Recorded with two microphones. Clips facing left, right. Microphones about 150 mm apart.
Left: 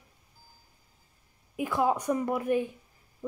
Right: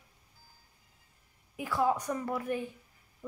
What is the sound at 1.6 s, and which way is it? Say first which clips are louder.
A woman's voice: left 2 dB; 20° left (ahead or behind).